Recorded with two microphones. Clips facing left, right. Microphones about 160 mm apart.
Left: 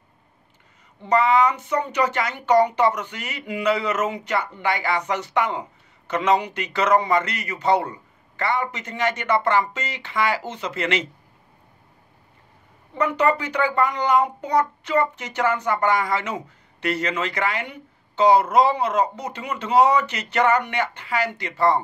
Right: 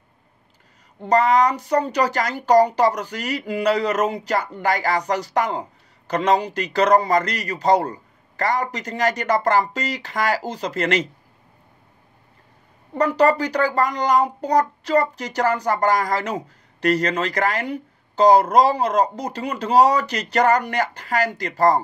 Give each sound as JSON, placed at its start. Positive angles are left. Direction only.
{"t": 1.0, "sound": "speech", "side_deg": -40}
{"t": 12.9, "sound": "speech", "side_deg": -35}